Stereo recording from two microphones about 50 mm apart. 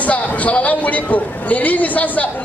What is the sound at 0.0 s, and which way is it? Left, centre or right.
A man's voice, left.